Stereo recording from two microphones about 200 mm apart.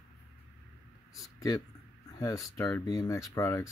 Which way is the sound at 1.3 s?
15° left (ahead or behind).